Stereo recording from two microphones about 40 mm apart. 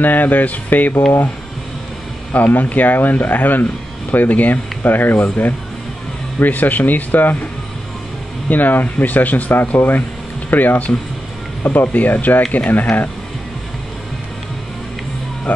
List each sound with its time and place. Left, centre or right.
0.0 s speech: left
2.3 s speech: left
8.5 s speech: left